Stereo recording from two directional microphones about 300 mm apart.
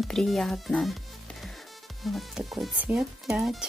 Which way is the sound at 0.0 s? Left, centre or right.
Centre.